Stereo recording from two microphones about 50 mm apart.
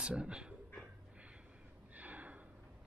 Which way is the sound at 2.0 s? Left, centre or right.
Right.